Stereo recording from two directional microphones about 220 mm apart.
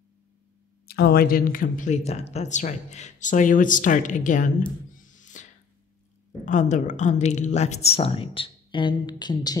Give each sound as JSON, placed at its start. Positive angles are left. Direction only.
{"t": 0.8, "sound": "speech", "side_deg": 45}
{"t": 5.0, "sound": "music", "side_deg": 35}
{"t": 6.4, "sound": "a woman's voice", "side_deg": 35}